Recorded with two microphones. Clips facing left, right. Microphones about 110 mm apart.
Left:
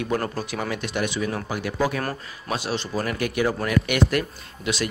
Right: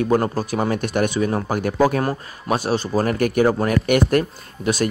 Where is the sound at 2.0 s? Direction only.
25° right (ahead or behind).